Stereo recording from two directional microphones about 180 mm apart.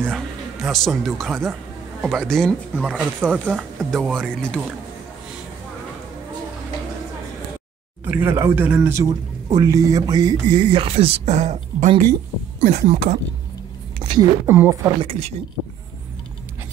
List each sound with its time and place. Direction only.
0.0 s speech: centre (ahead or behind)
8.0 s speech: 10° right (ahead or behind); by 13.2 s 40° right (ahead or behind)
14.1 s speech: 15° right (ahead or behind)
15.0 s speech: 35° right (ahead or behind)